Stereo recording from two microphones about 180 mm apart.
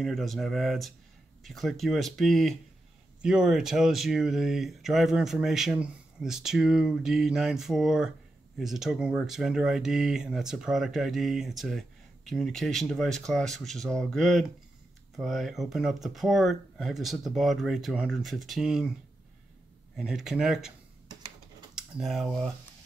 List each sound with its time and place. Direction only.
0.0 s speech: centre (ahead or behind)
20.0 s speech: 5° right (ahead or behind)
21.1 s typing: 25° right (ahead or behind)
21.7 s speech: centre (ahead or behind)